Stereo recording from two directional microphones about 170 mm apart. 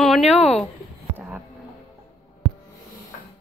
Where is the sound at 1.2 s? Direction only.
5° right (ahead or behind).